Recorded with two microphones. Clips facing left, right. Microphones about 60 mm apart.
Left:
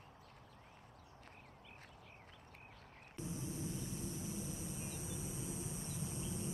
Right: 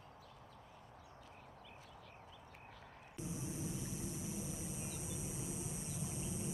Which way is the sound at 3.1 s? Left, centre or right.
Centre.